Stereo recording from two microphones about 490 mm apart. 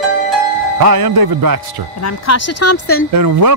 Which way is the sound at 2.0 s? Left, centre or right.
Left.